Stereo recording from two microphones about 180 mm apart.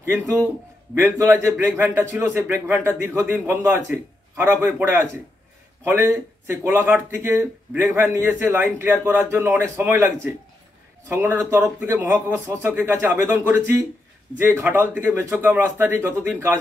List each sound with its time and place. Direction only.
0.0 s speech: 15° right (ahead or behind)